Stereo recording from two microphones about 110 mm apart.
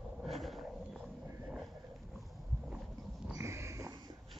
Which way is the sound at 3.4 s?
25° right (ahead or behind).